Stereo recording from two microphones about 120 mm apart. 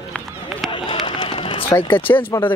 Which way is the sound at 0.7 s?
40° left (ahead or behind).